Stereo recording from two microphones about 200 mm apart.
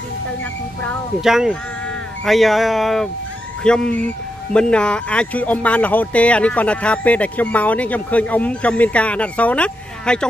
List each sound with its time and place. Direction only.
0.8 s speech: centre (ahead or behind)